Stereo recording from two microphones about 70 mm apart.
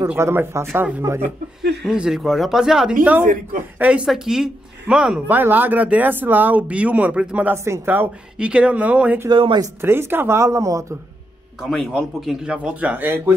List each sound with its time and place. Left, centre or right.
0.2 s speech: right
1.9 s speech: centre
3.0 s speech: right
4.0 s speech: centre
5.3 s speech: right
7.5 s speech: right
7.8 s speech: right
8.4 s speech: centre
9.3 s speech: right
9.8 s speech: right
11.6 s speech: centre
12.9 s speech: right